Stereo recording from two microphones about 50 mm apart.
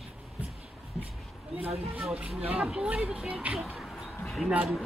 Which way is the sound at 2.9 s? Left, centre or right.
Right.